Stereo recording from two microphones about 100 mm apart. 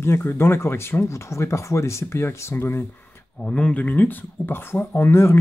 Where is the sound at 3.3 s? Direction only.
10° left (ahead or behind).